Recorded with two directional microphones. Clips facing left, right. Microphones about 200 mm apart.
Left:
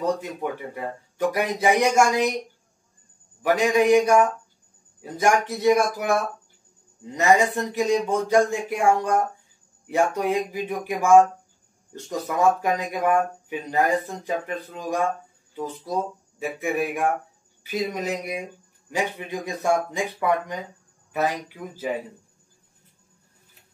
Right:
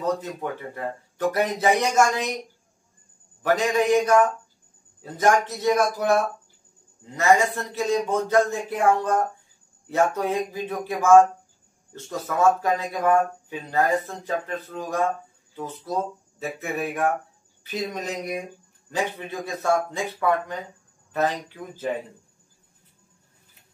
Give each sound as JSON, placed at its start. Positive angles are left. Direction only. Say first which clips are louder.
{"t": 0.0, "sound": "speech", "louder": "left 1 dB", "side_deg": 15}
{"t": 3.4, "sound": "speech", "louder": "left 2 dB", "side_deg": 10}